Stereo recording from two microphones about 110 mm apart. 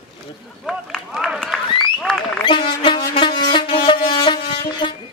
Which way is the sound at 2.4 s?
50° left (ahead or behind).